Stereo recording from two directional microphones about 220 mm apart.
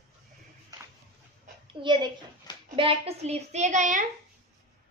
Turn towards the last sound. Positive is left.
turn(degrees=-35)  # may be behind; listen again after turning